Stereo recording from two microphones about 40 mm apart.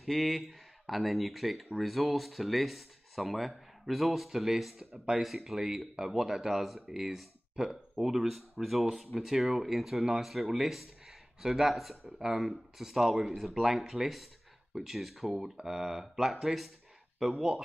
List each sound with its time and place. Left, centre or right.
0.0 s speech: centre
4.9 s speech: right
5.2 s speech: centre